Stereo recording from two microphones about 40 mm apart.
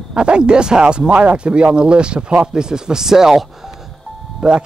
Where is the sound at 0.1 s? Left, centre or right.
Right.